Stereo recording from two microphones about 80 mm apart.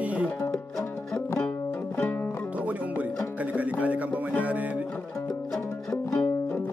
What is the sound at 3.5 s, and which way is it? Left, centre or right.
Music, centre.